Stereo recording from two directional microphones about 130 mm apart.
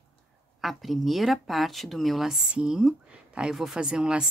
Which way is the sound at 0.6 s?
Centre (ahead or behind).